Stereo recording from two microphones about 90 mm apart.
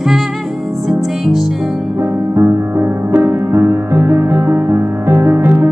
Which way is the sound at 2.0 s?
25° right (ahead or behind).